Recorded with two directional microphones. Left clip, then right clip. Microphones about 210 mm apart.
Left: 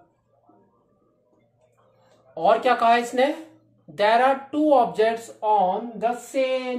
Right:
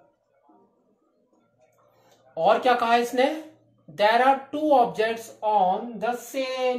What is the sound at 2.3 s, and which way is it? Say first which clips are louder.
Speech: left 1 dB; 10° left (ahead or behind).